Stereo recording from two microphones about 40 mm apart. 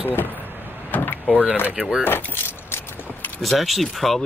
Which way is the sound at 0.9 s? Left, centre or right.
Left.